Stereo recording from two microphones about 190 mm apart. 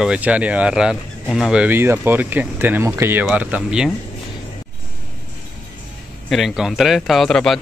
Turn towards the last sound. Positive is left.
turn(degrees=0)  # may be behind; listen again after turning